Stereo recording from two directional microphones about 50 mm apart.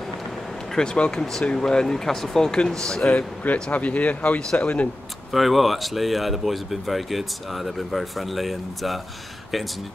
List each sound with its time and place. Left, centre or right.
0.7 s speech: centre
5.3 s speech: centre